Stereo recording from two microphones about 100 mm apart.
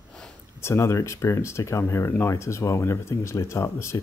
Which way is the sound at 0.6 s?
25° left (ahead or behind).